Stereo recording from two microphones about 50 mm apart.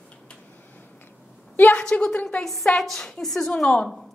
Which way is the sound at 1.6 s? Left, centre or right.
Left.